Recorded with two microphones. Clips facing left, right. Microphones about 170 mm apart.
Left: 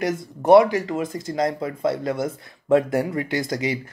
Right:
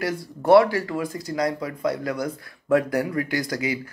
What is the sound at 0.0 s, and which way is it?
Speech, 20° left (ahead or behind).